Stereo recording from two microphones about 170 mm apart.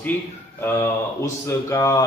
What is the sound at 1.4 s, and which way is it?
Speech, 15° left (ahead or behind).